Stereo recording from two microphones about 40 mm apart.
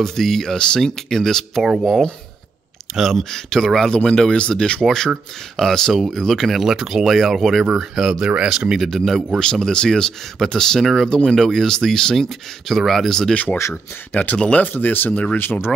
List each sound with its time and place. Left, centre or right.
0.0 s speech: centre
3.0 s speech: centre
3.3 s speech: centre
3.9 s speech: left
4.8 s speech: centre
5.9 s speech: centre
6.5 s speech: centre
8.7 s speech: centre
9.4 s speech: centre
10.8 s speech: centre
12.6 s speech: centre
13.3 s speech: left
14.7 s speech: left